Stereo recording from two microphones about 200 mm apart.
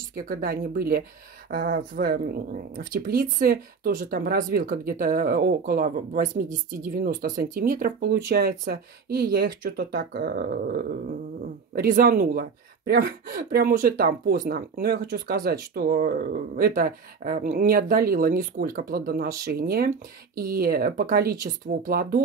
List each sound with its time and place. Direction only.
0.3 s speech: 50° right (ahead or behind)